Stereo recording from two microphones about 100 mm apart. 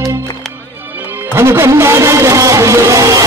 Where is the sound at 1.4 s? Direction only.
25° right (ahead or behind).